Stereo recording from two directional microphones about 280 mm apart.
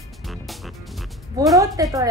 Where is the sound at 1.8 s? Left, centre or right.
Centre.